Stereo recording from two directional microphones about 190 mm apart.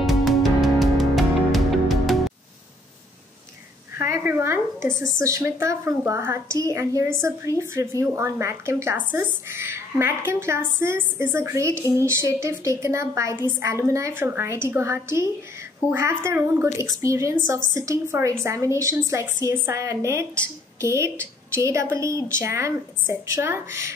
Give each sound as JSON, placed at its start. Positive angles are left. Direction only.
{"t": 0.0, "sound": "music", "side_deg": 0}
{"t": 4.1, "sound": "a woman's voice", "side_deg": -10}